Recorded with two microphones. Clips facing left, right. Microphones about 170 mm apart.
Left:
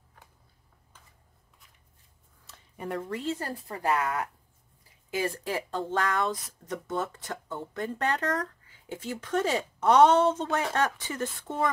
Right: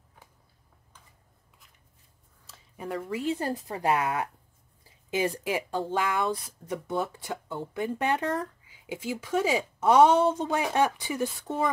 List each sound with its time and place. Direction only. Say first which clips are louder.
2.4 s a sound: even; centre (ahead or behind)
3.3 s a woman's voice: right 4 dB; 20° right (ahead or behind)
8.0 s speech: even; 15° right (ahead or behind)